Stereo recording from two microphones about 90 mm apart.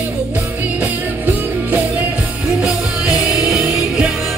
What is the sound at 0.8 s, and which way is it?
Music, 20° right (ahead or behind).